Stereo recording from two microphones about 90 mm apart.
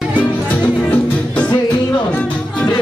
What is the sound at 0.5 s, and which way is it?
Music, 15° left (ahead or behind).